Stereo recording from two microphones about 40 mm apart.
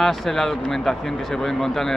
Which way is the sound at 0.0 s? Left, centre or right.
Centre.